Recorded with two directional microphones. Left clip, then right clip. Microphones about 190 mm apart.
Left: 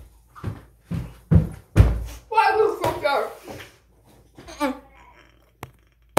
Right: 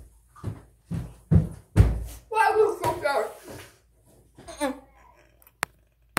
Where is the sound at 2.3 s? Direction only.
10° right (ahead or behind).